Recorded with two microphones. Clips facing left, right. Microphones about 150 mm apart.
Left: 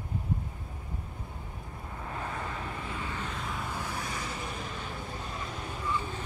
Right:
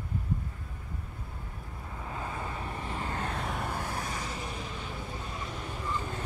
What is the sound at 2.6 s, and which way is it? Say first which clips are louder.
Vehicle: right 1 dB; 30° right (ahead or behind).